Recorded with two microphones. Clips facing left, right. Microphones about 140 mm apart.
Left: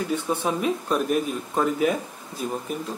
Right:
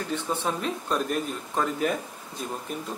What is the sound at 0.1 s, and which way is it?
Speech, 10° left (ahead or behind).